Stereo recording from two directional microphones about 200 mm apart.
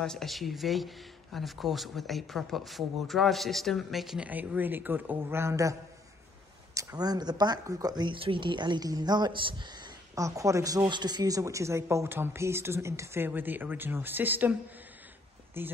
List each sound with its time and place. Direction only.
0.0 s speech: centre (ahead or behind)